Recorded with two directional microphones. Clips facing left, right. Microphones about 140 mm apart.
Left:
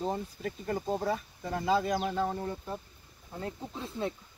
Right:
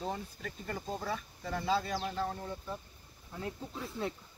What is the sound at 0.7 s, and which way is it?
Speech, 45° left (ahead or behind).